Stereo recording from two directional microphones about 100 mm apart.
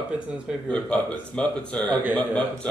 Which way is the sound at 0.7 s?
15° left (ahead or behind).